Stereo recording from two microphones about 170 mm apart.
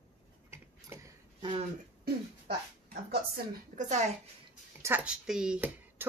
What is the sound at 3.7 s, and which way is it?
Speech, 45° right (ahead or behind).